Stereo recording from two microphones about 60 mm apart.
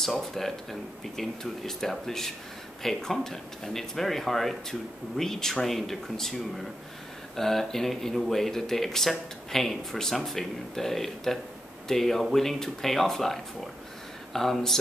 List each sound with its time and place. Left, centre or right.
0.0 s speech: centre